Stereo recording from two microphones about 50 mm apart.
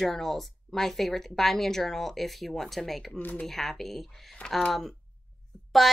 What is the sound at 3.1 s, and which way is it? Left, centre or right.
Speech, left.